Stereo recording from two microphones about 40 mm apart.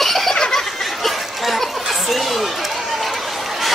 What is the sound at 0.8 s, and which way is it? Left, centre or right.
Chatter, centre.